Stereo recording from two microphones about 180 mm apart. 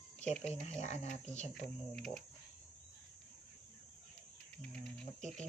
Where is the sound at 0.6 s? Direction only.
35° left (ahead or behind).